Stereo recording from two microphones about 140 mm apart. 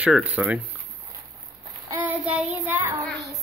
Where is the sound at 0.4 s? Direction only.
10° right (ahead or behind).